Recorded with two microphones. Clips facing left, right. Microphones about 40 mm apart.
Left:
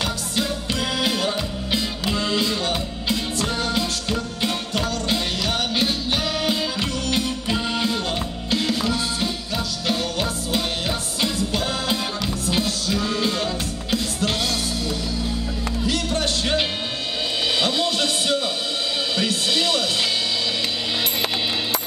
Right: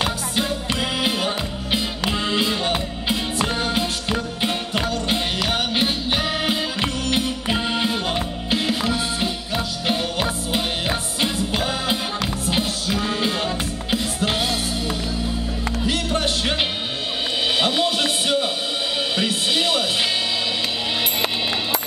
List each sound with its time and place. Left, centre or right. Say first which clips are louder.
0.7 s music: left 1 dB; right
15.9 s music: right 1 dB; right